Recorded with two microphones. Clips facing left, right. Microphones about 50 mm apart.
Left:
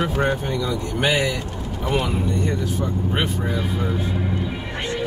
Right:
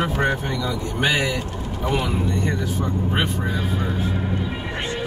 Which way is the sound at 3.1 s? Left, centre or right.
Centre.